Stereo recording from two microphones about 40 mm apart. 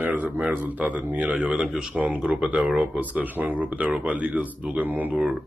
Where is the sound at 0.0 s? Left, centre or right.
Right.